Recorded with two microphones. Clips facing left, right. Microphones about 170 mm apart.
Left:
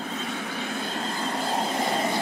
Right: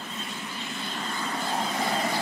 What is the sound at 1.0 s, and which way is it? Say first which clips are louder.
Vehicle: left 1 dB; 35° left (ahead or behind).